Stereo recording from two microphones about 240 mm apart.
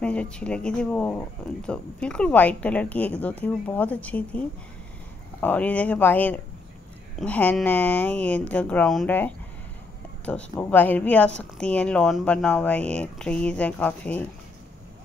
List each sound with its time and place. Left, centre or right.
0.0 s a woman's voice: centre